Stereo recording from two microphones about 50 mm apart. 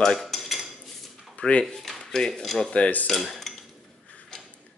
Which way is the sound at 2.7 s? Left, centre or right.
Left.